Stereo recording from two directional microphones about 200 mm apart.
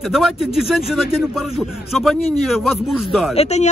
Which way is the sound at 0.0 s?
Centre (ahead or behind).